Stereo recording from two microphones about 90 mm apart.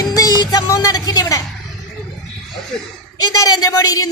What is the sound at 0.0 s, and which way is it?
Music, 45° left (ahead or behind).